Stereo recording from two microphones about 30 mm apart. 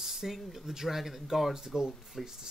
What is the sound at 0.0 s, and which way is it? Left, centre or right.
Speech, centre.